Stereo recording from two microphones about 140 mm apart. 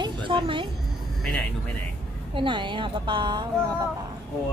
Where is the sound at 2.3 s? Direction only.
35° right (ahead or behind).